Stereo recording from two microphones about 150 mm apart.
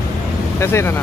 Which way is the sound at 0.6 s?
15° left (ahead or behind).